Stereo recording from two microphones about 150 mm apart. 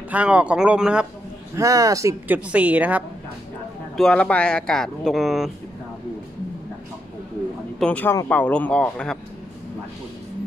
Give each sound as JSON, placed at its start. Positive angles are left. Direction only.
{"t": 0.1, "sound": "a woman's voice", "side_deg": -10}
{"t": 1.5, "sound": "a woman's voice", "side_deg": -20}
{"t": 3.9, "sound": "speech", "side_deg": 5}
{"t": 7.8, "sound": "speech", "side_deg": 10}